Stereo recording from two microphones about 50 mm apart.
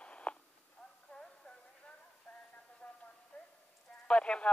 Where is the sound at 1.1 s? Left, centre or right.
Left.